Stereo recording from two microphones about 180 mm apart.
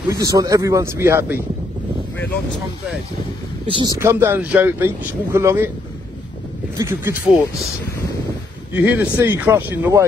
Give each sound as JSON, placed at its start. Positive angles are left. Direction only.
{"t": 0.1, "sound": "speech", "side_deg": -20}
{"t": 3.6, "sound": "speech", "side_deg": -25}
{"t": 6.8, "sound": "speech", "side_deg": -15}
{"t": 8.7, "sound": "speech", "side_deg": -10}